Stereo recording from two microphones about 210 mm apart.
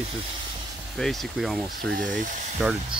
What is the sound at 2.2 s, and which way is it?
Speech, 35° right (ahead or behind).